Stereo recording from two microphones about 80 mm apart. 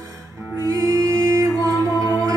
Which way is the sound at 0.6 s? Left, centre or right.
Right.